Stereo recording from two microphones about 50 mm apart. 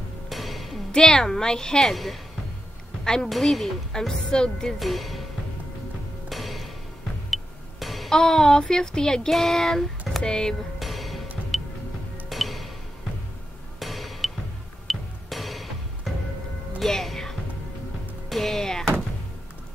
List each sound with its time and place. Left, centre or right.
0.3 s music: centre
0.9 s a woman's voice: centre
3.9 s speech: centre
4.7 s a woman's voice: centre
6.2 s music: centre
7.8 s music: centre
10.8 s music: centre
13.7 s hammer: centre
14.9 s music: centre